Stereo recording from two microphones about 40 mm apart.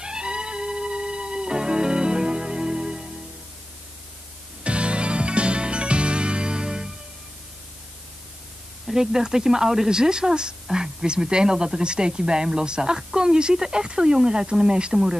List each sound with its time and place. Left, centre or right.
0.0 s music: right
4.6 s music: right
8.9 s speech: centre